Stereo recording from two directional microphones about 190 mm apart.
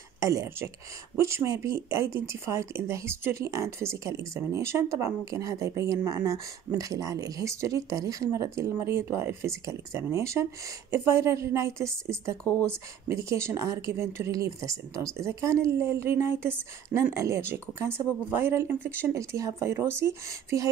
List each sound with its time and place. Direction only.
0.2 s speech: 15° right (ahead or behind)